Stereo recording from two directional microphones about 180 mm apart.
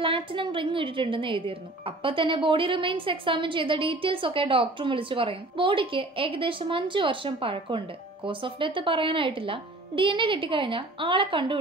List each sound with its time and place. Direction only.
0.0 s a woman's voice: 30° right (ahead or behind)